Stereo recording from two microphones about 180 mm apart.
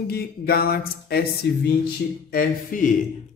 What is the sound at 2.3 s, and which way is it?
Speech, 50° left (ahead or behind).